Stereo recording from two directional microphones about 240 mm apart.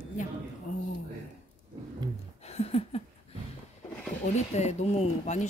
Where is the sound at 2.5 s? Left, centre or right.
Left.